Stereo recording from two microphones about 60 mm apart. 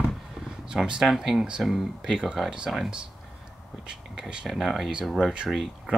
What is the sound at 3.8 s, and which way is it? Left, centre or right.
Speech, centre.